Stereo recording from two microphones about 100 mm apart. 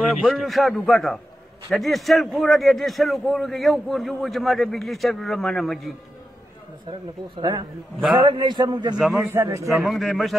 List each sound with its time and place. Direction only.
0.2 s a man's voice: 5° right (ahead or behind)
8.3 s a man's voice: 50° right (ahead or behind)
8.9 s a man's voice: 5° right (ahead or behind)
9.3 s a man's voice: 30° right (ahead or behind)
9.7 s a man's voice: centre (ahead or behind)